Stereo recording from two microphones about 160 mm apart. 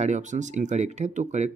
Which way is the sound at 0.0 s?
50° right (ahead or behind).